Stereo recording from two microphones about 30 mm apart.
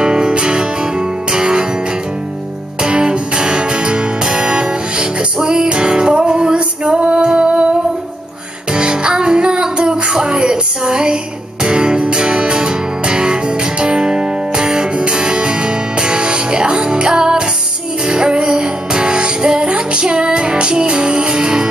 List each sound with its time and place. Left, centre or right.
0.0 s music: right
2.8 s music: right
8.7 s music: right